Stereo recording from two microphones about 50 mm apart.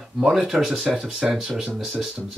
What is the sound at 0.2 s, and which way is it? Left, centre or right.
Speech, centre.